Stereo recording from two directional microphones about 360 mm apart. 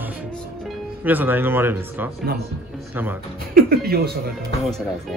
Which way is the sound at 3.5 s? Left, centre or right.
Right.